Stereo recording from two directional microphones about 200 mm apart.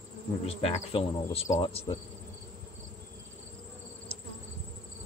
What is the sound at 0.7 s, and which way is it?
Insect, 30° left (ahead or behind).